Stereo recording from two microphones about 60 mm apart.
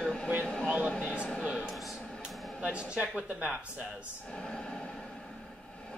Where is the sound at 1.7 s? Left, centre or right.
Centre.